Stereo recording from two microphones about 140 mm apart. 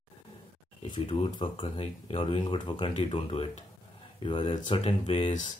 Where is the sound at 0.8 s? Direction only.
35° left (ahead or behind).